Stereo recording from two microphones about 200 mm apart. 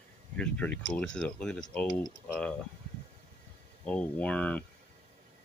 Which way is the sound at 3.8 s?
5° left (ahead or behind).